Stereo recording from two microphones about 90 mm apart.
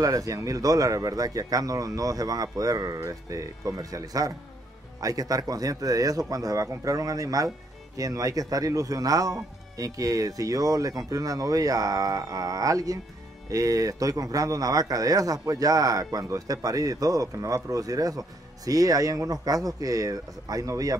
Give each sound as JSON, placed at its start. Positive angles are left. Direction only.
{"t": 0.0, "sound": "a man's voice", "side_deg": -40}